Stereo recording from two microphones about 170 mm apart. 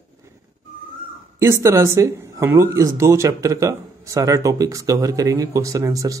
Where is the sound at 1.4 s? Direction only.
15° right (ahead or behind).